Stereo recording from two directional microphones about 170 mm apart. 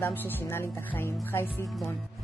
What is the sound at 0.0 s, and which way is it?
Speech, 10° left (ahead or behind).